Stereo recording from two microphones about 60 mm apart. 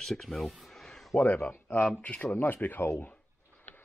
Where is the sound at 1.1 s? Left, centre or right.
Left.